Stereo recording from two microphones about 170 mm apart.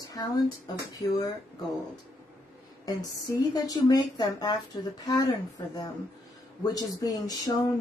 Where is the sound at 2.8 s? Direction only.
20° left (ahead or behind).